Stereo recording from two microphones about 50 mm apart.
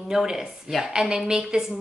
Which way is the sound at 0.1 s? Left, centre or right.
Centre.